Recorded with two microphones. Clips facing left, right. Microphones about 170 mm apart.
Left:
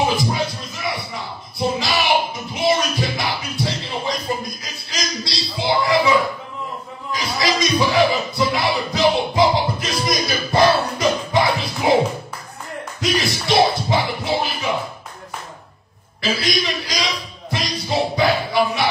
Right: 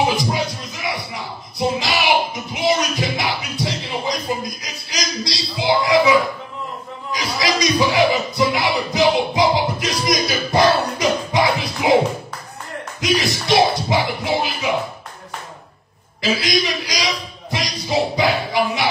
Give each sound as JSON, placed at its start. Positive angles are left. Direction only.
{"t": 0.1, "sound": "music", "side_deg": -20}
{"t": 4.6, "sound": "a sound", "side_deg": -20}
{"t": 7.3, "sound": "music", "side_deg": -20}
{"t": 13.0, "sound": "music", "side_deg": -20}
{"t": 16.2, "sound": "a sound", "side_deg": -20}
{"t": 17.5, "sound": "music", "side_deg": -20}